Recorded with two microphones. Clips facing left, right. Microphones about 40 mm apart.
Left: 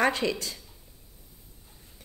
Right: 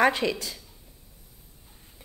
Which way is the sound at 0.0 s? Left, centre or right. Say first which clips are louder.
Right 3 dB; centre.